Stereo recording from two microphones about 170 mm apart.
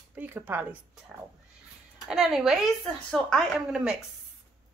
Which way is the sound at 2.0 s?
Centre (ahead or behind).